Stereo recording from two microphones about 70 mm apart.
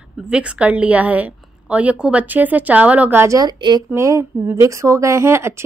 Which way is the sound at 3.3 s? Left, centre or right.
Right.